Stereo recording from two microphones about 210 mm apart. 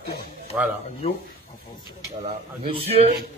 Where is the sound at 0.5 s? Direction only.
10° right (ahead or behind).